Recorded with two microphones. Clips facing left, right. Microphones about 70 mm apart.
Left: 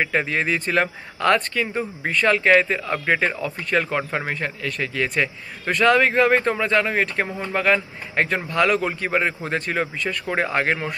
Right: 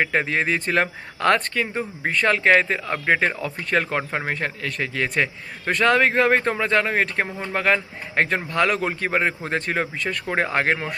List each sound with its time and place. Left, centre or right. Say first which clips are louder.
0.0 s a man's voice: even; right
1.7 s speech: even; right
2.1 s a man's voice: left 1 dB; right
7.2 s speech: left 1 dB; centre
7.5 s a man's voice: left 1 dB; right